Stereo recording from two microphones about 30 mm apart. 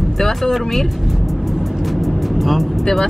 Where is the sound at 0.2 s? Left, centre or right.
Centre.